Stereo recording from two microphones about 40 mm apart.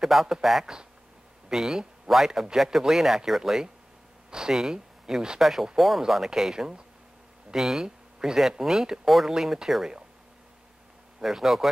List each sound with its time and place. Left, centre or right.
0.0 s speech: centre
5.4 s speech: centre
9.0 s speech: centre
11.2 s speech: centre